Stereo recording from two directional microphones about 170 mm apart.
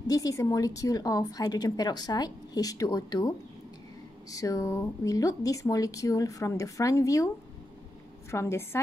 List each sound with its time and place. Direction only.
0.1 s a woman's voice: 20° left (ahead or behind)
8.3 s a woman's voice: 15° left (ahead or behind)